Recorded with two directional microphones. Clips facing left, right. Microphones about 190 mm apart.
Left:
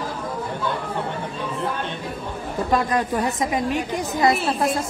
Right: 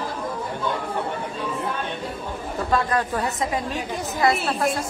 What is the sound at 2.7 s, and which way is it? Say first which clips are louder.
A woman's voice: left 1 dB; 15° left (ahead or behind).